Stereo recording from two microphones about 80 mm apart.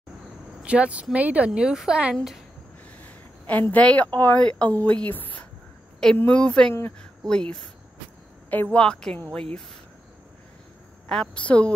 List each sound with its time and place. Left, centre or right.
0.6 s speech: centre
3.0 s speech: left
8.7 s speech: centre
11.1 s speech: centre